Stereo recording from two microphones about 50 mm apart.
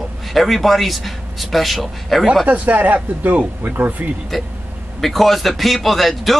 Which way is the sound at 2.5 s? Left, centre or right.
Right.